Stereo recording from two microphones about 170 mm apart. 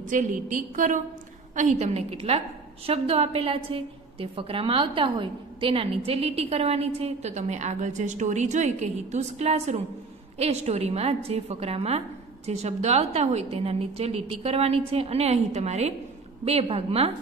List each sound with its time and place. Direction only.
0.1 s a woman's voice: 50° right (ahead or behind)